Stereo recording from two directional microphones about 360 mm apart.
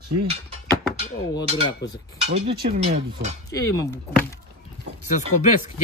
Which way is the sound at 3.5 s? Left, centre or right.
Centre.